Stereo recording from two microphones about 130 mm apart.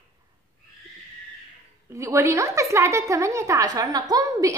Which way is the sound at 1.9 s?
20° right (ahead or behind).